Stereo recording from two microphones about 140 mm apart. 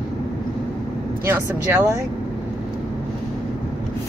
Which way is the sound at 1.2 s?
15° right (ahead or behind).